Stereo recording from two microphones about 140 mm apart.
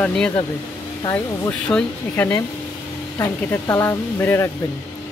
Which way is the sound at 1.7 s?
10° left (ahead or behind).